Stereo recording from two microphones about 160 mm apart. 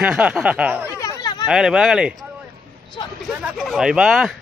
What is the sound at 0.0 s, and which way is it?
Speech, 5° right (ahead or behind).